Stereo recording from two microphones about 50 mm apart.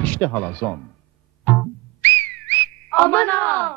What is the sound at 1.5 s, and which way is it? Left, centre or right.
Music, left.